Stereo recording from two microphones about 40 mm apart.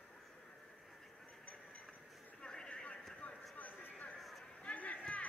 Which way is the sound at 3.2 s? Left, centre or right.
Left.